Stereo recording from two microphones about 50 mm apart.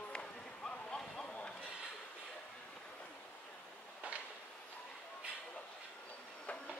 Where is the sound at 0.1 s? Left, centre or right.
Centre.